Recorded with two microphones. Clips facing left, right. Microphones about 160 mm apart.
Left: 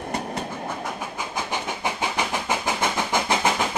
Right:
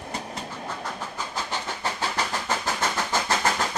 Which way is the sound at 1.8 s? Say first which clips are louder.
Left 2 dB; 15° left (ahead or behind).